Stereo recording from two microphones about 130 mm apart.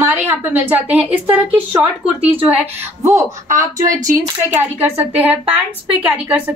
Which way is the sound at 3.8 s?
90° right.